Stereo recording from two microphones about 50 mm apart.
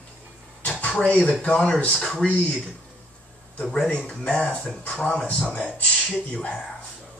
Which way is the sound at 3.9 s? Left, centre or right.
Left.